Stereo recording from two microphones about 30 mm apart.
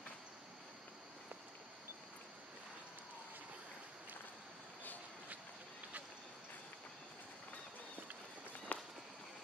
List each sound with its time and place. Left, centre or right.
8.7 s run: left